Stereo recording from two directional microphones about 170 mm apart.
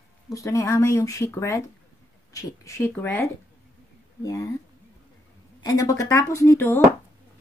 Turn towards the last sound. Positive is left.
turn(degrees=15)  # may be behind; listen again after turning